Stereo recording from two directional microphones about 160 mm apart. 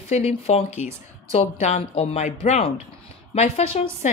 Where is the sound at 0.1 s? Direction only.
40° left (ahead or behind).